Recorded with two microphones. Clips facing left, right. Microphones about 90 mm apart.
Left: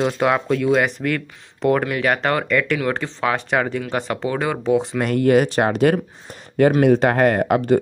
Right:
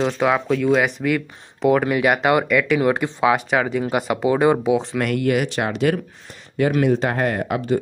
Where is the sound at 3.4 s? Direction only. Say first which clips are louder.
Right 1 dB; centre (ahead or behind); by 4.6 s 15° right (ahead or behind).